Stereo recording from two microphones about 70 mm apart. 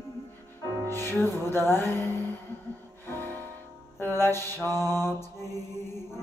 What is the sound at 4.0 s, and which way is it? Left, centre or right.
Mantra, left.